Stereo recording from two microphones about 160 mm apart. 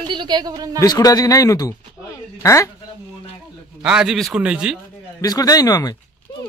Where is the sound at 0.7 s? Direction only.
25° left (ahead or behind).